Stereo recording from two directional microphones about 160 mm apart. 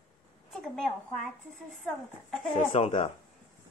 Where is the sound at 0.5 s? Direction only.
5° left (ahead or behind).